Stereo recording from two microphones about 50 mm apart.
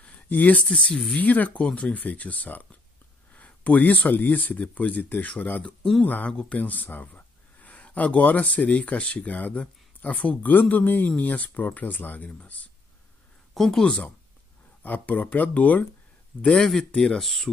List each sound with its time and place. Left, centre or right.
0.0 s a sound: left
0.7 s speech: centre
1.1 s speech: left
13.6 s speech: centre
14.8 s speech: left
16.3 s speech: centre
17.2 s speech: centre